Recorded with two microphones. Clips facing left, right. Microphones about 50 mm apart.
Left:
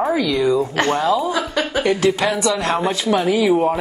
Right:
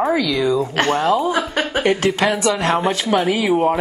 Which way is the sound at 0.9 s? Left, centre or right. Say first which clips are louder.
Right 2 dB; right.